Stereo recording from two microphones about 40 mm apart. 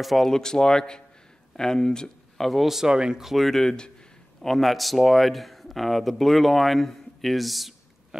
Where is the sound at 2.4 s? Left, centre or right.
Centre.